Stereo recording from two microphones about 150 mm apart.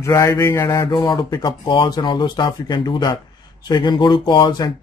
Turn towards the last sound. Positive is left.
turn(degrees=30)  # may be behind; listen again after turning